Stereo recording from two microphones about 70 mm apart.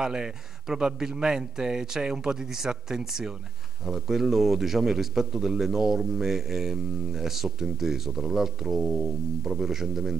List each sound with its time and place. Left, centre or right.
0.0 s a man's voice: centre